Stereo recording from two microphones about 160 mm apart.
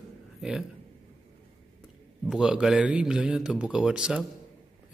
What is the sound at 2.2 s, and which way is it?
A man's voice, 5° right (ahead or behind).